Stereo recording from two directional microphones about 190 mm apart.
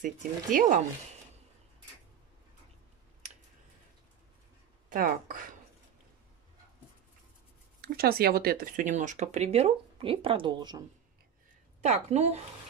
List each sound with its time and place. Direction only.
0.0 s speech: 45° right (ahead or behind)
4.8 s speech: 45° right (ahead or behind)
7.8 s speech: 55° right (ahead or behind); by 10.8 s 25° right (ahead or behind)
11.8 s speech: 35° right (ahead or behind)